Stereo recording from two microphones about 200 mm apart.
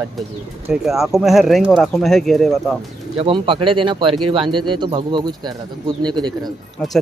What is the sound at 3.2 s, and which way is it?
Speech, 25° right (ahead or behind).